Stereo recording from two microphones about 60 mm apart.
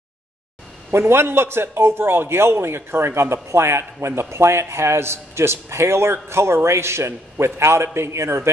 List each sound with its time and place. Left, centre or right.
0.9 s a man's voice: right